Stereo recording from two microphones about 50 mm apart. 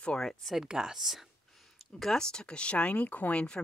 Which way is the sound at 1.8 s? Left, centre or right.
Centre.